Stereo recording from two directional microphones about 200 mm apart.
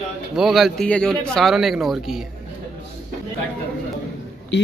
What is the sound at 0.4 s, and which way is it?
Speech, centre (ahead or behind).